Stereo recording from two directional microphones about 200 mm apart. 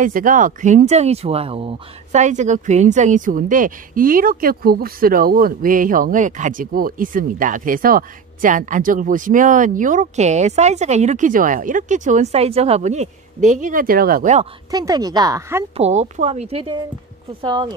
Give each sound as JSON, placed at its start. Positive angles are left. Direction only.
{"t": 0.0, "sound": "speech", "side_deg": -40}
{"t": 14.7, "sound": "speech", "side_deg": -20}
{"t": 15.7, "sound": "speech", "side_deg": -35}